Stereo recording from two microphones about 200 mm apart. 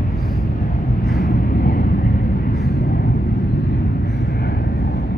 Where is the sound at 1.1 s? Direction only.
50° left (ahead or behind).